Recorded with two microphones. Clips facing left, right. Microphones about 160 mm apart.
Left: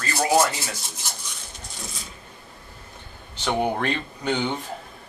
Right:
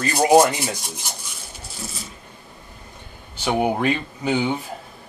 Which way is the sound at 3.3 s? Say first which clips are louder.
Right 3 dB; 10° right (ahead or behind).